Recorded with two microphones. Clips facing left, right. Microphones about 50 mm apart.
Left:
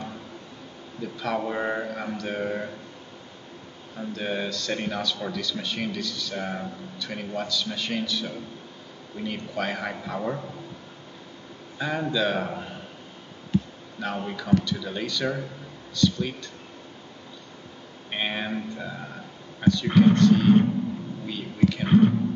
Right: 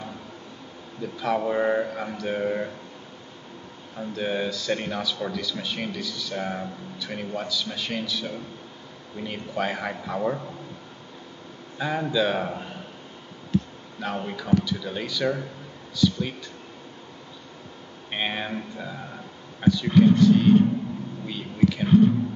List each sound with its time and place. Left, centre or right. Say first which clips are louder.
1.2 s speech: right 4 dB; centre
3.9 s speech: right 2 dB; centre
11.8 s speech: right 1 dB; centre
18.1 s a sound: even; centre
19.6 s speech: even; centre
21.8 s speech: right 1 dB; left